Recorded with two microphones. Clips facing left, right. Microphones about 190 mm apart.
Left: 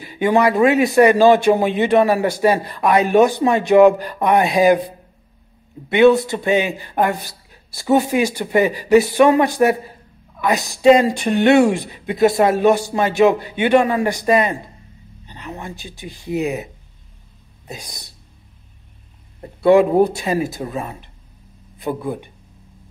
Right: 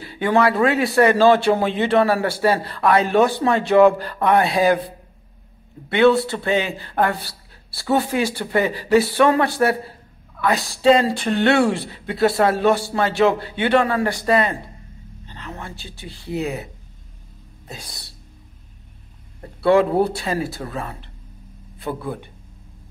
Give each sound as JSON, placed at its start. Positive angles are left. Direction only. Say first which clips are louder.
{"t": 0.0, "sound": "speech", "louder": "left 2 dB", "side_deg": 15}
{"t": 17.6, "sound": "speech", "louder": "left 3 dB", "side_deg": 15}
{"t": 19.4, "sound": "speech", "louder": "left 3 dB", "side_deg": 15}